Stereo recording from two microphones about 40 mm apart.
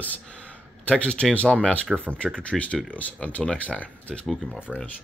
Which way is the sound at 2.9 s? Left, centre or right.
Left.